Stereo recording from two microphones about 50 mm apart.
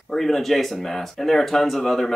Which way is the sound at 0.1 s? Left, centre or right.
Centre.